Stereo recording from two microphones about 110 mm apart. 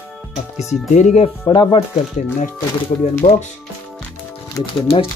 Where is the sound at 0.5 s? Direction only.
90° left.